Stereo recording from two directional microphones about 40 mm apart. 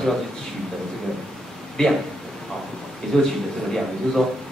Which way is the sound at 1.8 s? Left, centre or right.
Centre.